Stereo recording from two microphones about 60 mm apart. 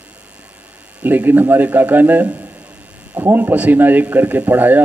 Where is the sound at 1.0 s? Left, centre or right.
Right.